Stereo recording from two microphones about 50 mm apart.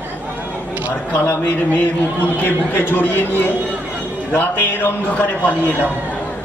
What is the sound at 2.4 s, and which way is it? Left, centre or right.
Music, left.